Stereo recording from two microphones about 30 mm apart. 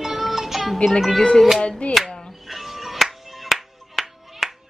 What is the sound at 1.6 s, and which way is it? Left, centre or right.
Music, left.